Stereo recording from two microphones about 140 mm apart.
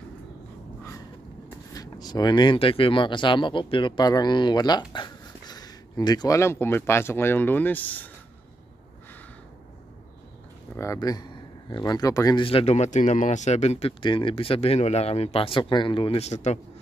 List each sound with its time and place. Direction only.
1.7 s speech: 25° left (ahead or behind)
10.8 s speech: 25° left (ahead or behind)
12.4 s speech: 45° left (ahead or behind)